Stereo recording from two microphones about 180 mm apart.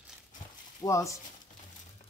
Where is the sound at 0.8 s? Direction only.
20° left (ahead or behind).